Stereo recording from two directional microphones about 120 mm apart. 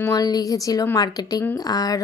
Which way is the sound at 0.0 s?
30° left (ahead or behind).